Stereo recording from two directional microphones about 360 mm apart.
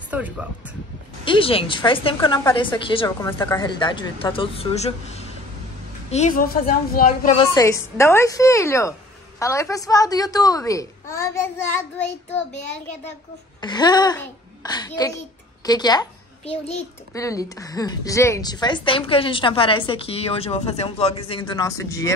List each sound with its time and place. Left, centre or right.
0.1 s a child's voice: centre
1.2 s a child's voice: centre
7.5 s a child's voice: centre